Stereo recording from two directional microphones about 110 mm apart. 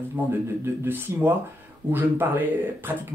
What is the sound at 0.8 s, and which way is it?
Speech, 20° right (ahead or behind).